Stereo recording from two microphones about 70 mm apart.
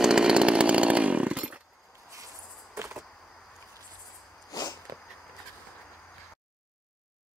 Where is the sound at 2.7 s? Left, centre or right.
Right.